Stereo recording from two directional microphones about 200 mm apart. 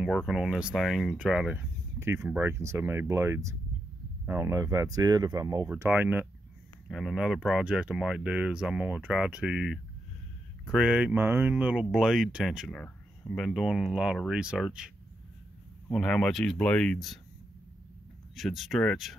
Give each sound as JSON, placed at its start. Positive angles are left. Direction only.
{"t": 0.3, "sound": "speech", "side_deg": 0}
{"t": 15.9, "sound": "speech", "side_deg": 5}
{"t": 18.3, "sound": "speech", "side_deg": 0}